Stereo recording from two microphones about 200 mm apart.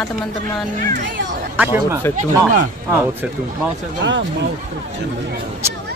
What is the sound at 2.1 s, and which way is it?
Speech, 40° right (ahead or behind).